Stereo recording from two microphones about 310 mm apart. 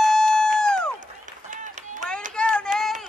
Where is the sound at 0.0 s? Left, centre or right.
Centre.